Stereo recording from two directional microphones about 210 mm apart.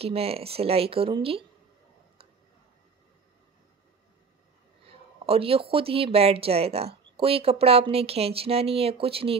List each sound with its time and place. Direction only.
0.0 s speech: 30° right (ahead or behind)
5.2 s speech: 25° right (ahead or behind)